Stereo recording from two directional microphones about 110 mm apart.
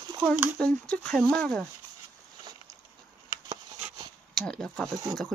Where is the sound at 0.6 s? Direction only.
10° left (ahead or behind).